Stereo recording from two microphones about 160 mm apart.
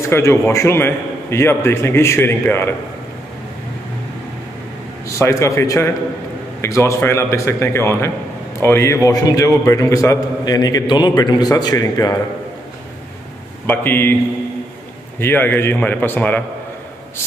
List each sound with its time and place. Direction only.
0.1 s a man's voice: 15° left (ahead or behind)
5.0 s a man's voice: 20° left (ahead or behind)
13.7 s a man's voice: 15° left (ahead or behind)
15.1 s a man's voice: 10° left (ahead or behind)